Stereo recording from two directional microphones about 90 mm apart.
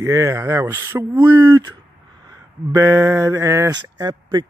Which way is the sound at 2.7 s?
35° right (ahead or behind).